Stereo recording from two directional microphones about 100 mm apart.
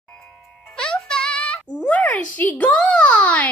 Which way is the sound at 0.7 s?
10° left (ahead or behind).